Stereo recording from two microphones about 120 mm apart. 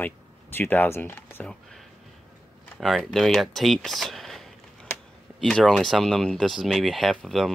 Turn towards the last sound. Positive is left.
turn(degrees=0)  # may be behind; listen again after turning